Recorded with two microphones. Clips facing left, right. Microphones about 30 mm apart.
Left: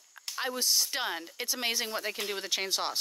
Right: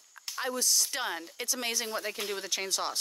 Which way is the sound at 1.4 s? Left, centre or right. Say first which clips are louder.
Left 1 dB; left.